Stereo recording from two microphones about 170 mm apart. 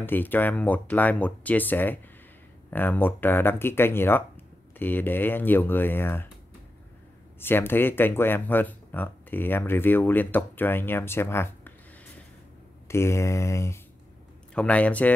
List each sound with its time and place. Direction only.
0.0 s speech: 10° left (ahead or behind)
7.3 s speech: 15° left (ahead or behind)
12.8 s speech: 15° left (ahead or behind)
14.5 s speech: 5° left (ahead or behind)